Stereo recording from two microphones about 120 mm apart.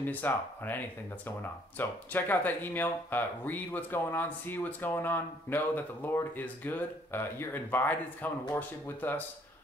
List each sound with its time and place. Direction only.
0.0 s speech: 15° left (ahead or behind)